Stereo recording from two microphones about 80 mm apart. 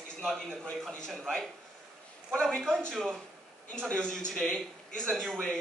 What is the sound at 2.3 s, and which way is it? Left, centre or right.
Speech, centre.